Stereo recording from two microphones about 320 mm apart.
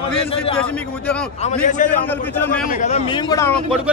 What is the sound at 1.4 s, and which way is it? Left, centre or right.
Speech, left.